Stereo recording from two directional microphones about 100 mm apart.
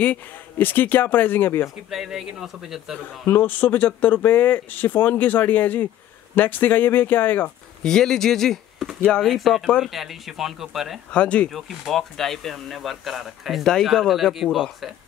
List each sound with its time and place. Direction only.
0.0 s speech: 15° left (ahead or behind)
1.9 s speech: 5° right (ahead or behind)
3.3 s speech: 20° left (ahead or behind)
7.8 s speech: 5° left (ahead or behind)
11.1 s speech: 10° left (ahead or behind)